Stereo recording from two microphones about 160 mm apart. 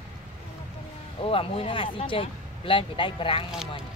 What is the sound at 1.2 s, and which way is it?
Speech, 35° left (ahead or behind).